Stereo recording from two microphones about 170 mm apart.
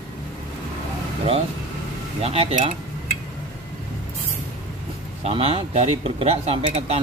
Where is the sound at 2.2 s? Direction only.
35° right (ahead or behind).